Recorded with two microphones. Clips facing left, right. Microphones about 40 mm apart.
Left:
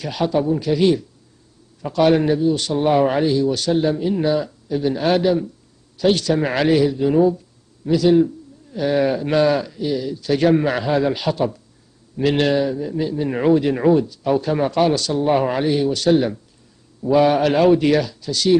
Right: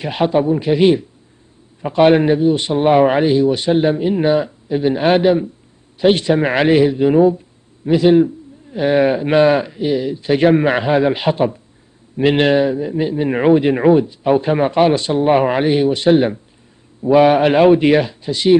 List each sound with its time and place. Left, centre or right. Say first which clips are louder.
0.0 s a man's voice: right 4 dB; right